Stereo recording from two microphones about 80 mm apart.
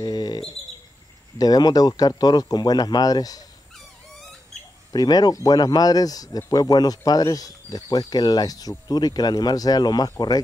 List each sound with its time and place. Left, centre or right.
0.0 s bird: left
1.4 s speech: left
4.9 s speech: left